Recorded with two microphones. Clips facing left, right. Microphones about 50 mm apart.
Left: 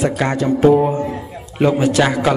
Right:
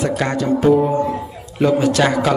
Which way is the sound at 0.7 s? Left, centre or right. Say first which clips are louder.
Even; left.